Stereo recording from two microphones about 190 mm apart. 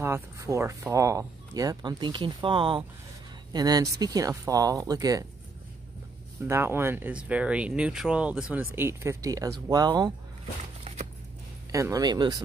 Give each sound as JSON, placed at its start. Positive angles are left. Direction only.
{"t": 0.0, "sound": "speech", "side_deg": -15}
{"t": 6.4, "sound": "speech", "side_deg": -10}
{"t": 10.6, "sound": "a sound", "side_deg": -35}
{"t": 11.7, "sound": "speech", "side_deg": -15}